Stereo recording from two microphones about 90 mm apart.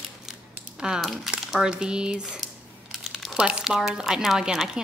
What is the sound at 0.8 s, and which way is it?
Squish, 5° right (ahead or behind).